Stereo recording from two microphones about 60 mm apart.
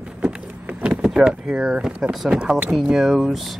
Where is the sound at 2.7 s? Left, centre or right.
Centre.